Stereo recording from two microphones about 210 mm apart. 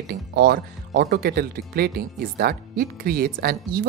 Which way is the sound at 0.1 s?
50° right (ahead or behind).